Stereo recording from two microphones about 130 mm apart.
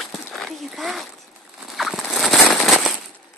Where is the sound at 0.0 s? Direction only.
Centre (ahead or behind).